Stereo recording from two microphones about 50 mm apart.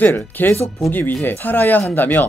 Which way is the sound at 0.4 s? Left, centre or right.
Left.